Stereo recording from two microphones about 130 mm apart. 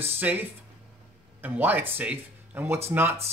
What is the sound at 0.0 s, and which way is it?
A man's voice, 15° right (ahead or behind).